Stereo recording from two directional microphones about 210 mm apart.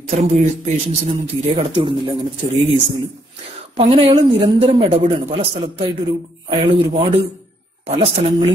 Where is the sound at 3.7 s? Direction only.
30° right (ahead or behind).